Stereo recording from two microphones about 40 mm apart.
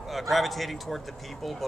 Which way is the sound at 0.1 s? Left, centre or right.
Centre.